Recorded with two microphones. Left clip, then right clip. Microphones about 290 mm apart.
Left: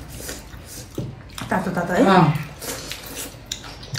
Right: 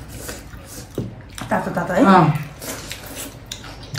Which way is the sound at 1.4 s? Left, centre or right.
Centre.